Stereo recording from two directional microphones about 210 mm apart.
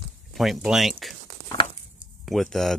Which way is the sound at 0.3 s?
Centre (ahead or behind).